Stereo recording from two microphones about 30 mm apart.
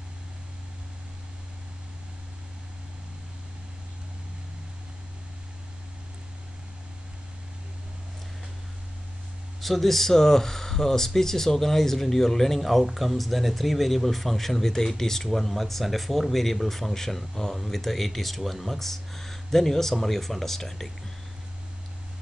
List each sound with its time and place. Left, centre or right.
9.6 s speech: centre